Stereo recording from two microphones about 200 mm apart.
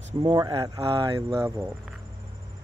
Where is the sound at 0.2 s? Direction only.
20° right (ahead or behind).